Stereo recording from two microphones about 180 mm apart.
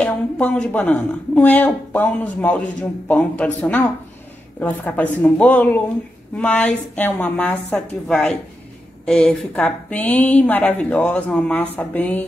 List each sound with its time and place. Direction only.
0.0 s a woman's voice: 5° left (ahead or behind)